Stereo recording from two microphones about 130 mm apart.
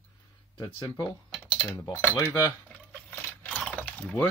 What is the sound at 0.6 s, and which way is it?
Speech, 35° left (ahead or behind).